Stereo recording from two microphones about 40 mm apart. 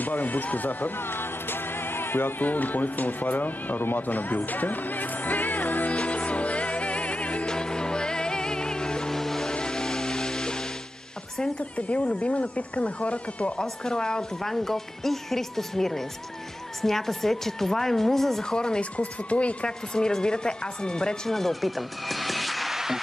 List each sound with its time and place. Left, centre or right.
0.0 s music: left
2.4 s speech: left
5.9 s music: left
7.4 s music: left
9.1 s music: centre
9.5 s music: left
12.1 s speech: left
13.8 s speech: centre
18.4 s speech: centre
18.8 s speech: left
19.9 s speech: centre
21.3 s speech: centre